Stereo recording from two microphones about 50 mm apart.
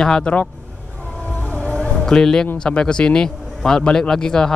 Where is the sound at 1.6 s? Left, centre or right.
Centre.